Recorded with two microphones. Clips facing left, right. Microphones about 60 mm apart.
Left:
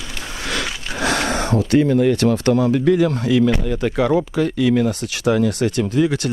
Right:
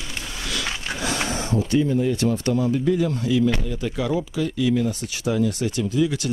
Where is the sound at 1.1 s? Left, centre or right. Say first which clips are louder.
Left 7 dB; left.